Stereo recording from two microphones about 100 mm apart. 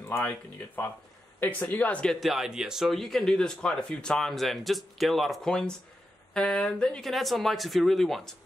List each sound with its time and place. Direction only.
0.8 s speech: 20° left (ahead or behind)
2.1 s speech: centre (ahead or behind)